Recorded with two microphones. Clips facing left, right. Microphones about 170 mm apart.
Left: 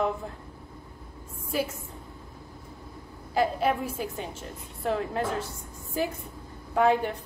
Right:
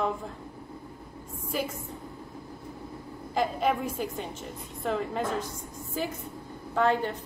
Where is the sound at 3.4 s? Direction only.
5° left (ahead or behind).